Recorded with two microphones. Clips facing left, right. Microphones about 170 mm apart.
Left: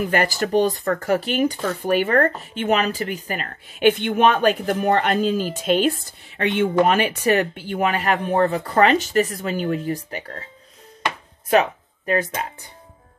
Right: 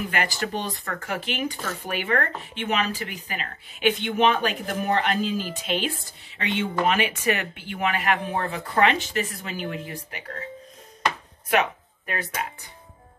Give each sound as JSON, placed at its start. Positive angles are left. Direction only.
{"t": 0.1, "sound": "speech", "side_deg": 40}
{"t": 6.8, "sound": "speech", "side_deg": 40}
{"t": 12.1, "sound": "speech", "side_deg": 35}